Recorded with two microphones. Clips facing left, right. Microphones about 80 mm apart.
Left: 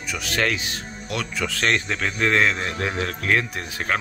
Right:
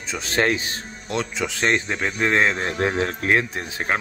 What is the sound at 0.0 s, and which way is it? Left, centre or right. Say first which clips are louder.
Speech: right 2 dB; right.